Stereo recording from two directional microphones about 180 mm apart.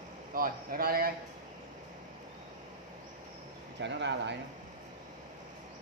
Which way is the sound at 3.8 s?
75° right (ahead or behind).